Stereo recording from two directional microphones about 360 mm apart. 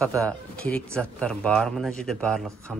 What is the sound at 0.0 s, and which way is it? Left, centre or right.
Speech, centre.